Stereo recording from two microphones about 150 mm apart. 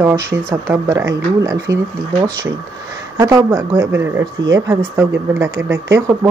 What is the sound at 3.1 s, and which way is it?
Speech, 25° right (ahead or behind).